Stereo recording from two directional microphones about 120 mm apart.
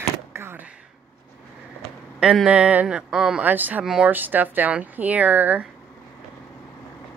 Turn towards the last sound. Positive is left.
turn(degrees=-15)  # may be behind; listen again after turning